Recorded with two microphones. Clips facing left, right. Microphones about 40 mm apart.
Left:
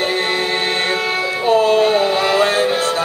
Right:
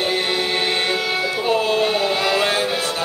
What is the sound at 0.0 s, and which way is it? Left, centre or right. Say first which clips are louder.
Music: left 3 dB; left.